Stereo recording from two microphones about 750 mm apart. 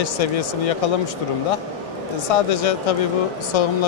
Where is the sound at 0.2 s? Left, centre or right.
Left.